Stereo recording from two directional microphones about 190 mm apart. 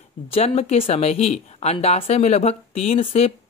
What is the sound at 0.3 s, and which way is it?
Speech, 35° left (ahead or behind).